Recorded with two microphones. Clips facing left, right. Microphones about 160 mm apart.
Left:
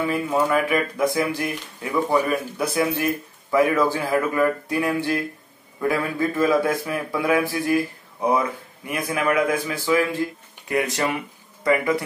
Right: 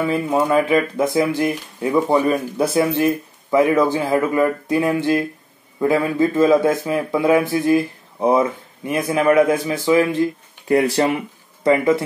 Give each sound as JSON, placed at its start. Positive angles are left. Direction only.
{"t": 0.0, "sound": "speech", "side_deg": -25}
{"t": 10.7, "sound": "speech", "side_deg": -30}